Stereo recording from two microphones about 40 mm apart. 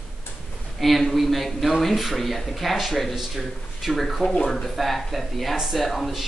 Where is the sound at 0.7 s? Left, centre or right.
Centre.